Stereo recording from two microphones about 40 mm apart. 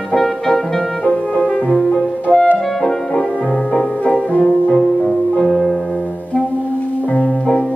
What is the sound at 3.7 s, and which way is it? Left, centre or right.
Music, left.